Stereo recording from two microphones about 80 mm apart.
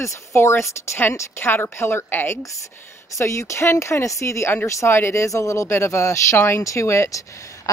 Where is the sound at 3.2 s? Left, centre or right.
Left.